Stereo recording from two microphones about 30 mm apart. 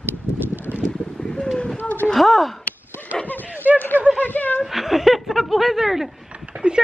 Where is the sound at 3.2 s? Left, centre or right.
Left.